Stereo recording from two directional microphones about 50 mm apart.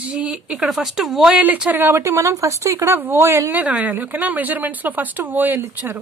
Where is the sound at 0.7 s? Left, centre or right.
Centre.